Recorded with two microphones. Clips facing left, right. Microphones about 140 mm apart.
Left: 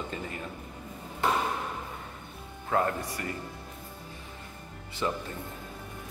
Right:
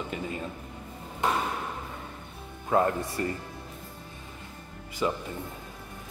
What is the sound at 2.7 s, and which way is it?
Speech, 20° right (ahead or behind).